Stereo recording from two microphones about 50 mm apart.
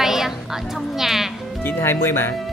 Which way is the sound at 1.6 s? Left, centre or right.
Left.